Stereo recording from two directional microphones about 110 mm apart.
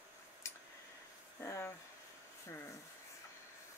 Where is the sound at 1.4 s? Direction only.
25° left (ahead or behind).